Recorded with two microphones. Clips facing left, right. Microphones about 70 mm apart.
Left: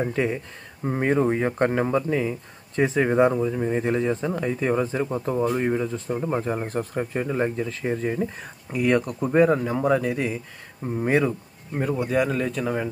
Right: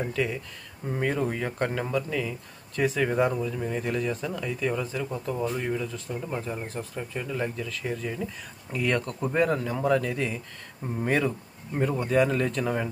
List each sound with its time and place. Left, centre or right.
0.0 s speech: left
8.7 s speech: centre